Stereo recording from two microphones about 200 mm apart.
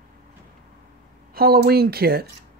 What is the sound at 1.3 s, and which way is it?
Speech, 50° right (ahead or behind).